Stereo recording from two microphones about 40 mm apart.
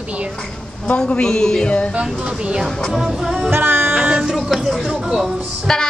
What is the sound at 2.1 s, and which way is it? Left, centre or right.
Speech, centre.